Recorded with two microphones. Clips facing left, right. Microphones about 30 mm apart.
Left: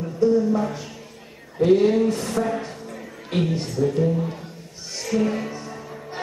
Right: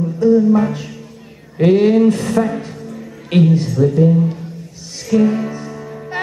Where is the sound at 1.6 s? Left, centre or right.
Right.